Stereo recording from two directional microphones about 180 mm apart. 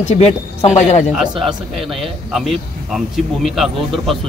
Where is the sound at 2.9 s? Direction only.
Centre (ahead or behind).